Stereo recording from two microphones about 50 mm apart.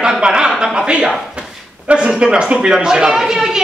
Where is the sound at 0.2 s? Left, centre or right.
Centre.